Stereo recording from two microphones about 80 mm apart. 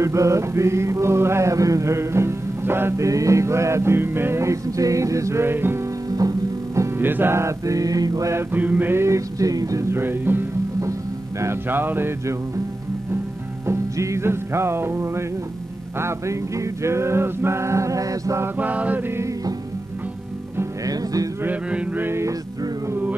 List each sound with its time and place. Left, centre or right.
0.0 s mantra: right
6.0 s music: right
7.0 s mantra: right
8.5 s chant: right
9.0 s mantra: right
10.8 s music: right
11.7 s chant: right
13.7 s music: right
16.0 s mantra: right
18.6 s chant: centre
20.8 s music: right
21.6 s music: centre
22.0 s mantra: right